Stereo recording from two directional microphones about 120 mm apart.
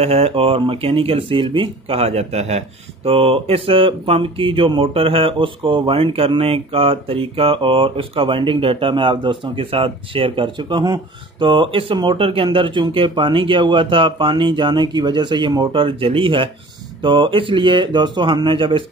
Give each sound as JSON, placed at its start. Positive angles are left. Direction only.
{"t": 0.0, "sound": "speech", "side_deg": -55}